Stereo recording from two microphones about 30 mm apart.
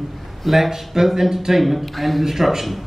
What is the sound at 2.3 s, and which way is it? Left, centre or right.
Speech, centre.